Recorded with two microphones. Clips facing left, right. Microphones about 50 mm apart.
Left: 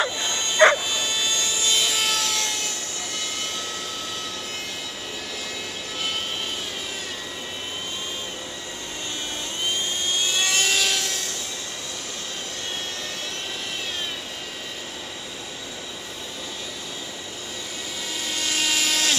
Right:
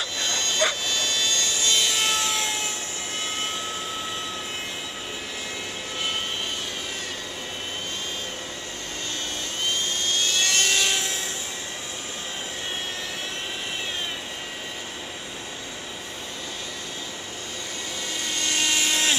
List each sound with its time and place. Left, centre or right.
0.0 s bow-wow: centre
0.8 s wood: centre; by 3.6 s right
9.7 s vehicle: centre
18.2 s a sound: centre